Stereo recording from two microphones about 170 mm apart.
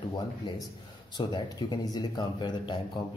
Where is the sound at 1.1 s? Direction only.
25° left (ahead or behind).